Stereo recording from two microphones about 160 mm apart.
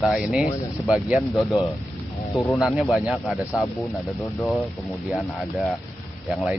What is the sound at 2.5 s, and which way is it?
Speech, centre (ahead or behind).